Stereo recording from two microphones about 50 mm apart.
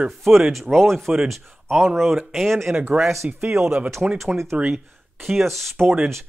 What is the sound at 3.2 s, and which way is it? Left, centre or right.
Speech, right.